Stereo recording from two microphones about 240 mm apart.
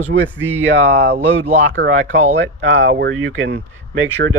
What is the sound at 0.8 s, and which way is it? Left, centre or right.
Speech, right.